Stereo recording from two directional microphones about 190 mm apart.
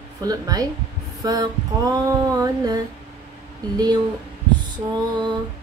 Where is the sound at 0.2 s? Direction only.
20° right (ahead or behind).